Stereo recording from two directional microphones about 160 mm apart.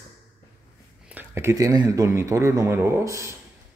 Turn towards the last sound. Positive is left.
turn(degrees=-20)  # may be behind; listen again after turning